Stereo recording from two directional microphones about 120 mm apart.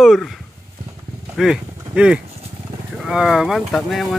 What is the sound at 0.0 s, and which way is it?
Speech, centre (ahead or behind).